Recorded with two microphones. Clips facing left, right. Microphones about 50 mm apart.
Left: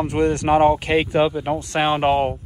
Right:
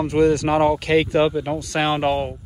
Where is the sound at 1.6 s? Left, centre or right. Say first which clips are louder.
Left 1 dB; left.